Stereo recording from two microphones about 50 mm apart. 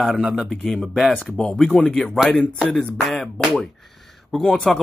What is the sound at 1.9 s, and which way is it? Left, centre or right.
Speech, centre.